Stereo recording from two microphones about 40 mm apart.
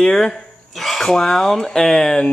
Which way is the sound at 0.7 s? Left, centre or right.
Centre.